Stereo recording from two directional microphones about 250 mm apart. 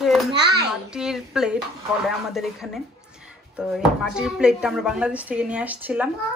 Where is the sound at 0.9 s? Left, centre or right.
Centre.